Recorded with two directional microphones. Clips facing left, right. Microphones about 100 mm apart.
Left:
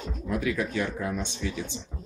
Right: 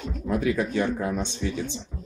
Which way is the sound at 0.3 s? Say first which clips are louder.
Right 4 dB; 30° right (ahead or behind).